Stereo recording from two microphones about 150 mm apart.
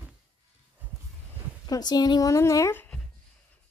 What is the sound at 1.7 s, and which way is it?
Speech, 25° left (ahead or behind).